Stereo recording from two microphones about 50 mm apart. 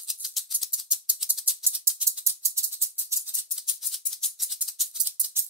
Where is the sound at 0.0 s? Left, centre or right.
Centre.